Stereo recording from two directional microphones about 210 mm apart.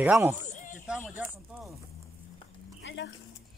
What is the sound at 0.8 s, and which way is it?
Speech, 5° right (ahead or behind).